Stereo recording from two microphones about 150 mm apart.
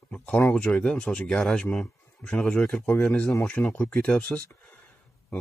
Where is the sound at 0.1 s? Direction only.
10° left (ahead or behind).